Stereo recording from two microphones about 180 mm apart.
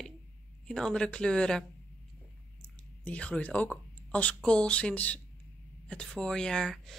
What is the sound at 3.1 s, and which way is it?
Speech, 5° left (ahead or behind).